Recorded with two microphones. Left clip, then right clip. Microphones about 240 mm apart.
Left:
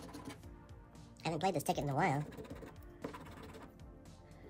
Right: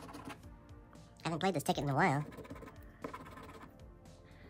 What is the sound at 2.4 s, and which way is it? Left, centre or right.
Music, centre.